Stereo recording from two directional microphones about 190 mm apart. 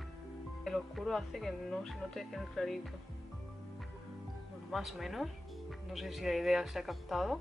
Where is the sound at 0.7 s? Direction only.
Centre (ahead or behind).